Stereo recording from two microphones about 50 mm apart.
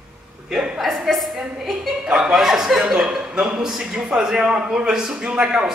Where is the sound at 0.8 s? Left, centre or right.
Centre.